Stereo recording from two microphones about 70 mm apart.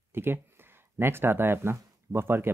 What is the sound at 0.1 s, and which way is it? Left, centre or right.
Speech, right.